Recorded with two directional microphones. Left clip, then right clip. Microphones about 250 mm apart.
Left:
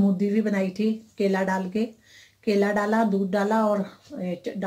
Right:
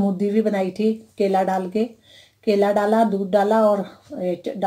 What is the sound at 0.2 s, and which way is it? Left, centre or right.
Speech, centre.